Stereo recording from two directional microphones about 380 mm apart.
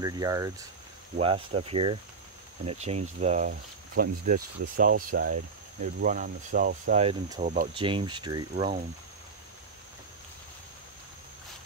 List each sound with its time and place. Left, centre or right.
0.0 s speech: centre